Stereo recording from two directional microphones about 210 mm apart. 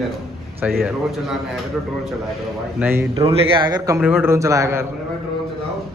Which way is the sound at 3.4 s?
20° right (ahead or behind).